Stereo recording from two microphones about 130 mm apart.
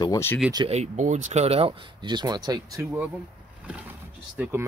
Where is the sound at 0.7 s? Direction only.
60° right (ahead or behind); by 3.0 s 25° right (ahead or behind).